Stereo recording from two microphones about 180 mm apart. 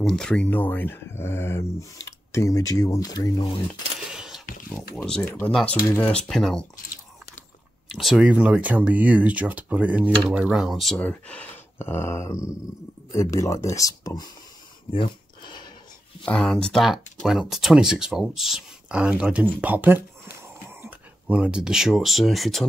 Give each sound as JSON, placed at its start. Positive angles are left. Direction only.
{"t": 0.0, "sound": "speech", "side_deg": 5}
{"t": 4.1, "sound": "keys jangling", "side_deg": -5}
{"t": 4.9, "sound": "speech", "side_deg": 5}
{"t": 7.9, "sound": "speech", "side_deg": 0}
{"t": 15.0, "sound": "a sound", "side_deg": 25}
{"t": 16.3, "sound": "speech", "side_deg": 5}